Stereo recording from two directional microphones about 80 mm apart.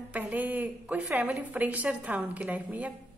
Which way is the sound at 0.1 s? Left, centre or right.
Right.